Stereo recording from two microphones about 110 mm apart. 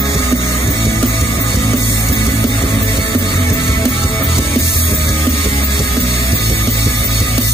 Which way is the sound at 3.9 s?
60° left (ahead or behind).